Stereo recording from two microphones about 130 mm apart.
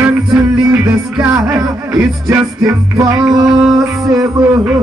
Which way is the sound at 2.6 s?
25° right (ahead or behind).